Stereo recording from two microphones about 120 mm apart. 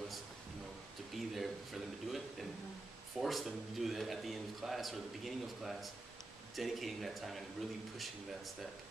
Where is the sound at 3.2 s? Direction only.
5° right (ahead or behind).